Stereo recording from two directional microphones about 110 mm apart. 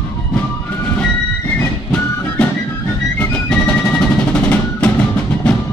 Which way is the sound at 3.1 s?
10° left (ahead or behind).